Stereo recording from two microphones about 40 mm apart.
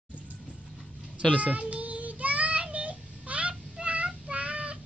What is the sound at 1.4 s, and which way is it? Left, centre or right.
Child singing, right.